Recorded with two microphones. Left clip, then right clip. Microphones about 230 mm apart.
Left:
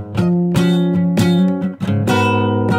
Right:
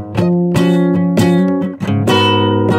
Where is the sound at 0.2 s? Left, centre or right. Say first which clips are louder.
Right 4 dB; right.